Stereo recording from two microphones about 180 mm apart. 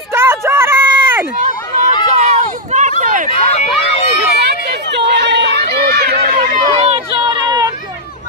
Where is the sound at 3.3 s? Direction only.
35° left (ahead or behind).